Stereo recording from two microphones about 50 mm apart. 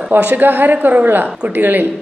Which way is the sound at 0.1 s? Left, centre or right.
Right.